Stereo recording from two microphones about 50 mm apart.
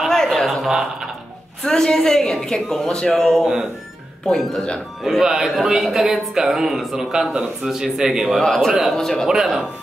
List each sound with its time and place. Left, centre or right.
0.1 s a sound: centre
0.5 s a man's voice: centre
1.6 s a woman's voice: centre
4.6 s speech: centre
5.0 s a man's voice: centre
8.4 s a woman's voice: centre
9.4 s speech: centre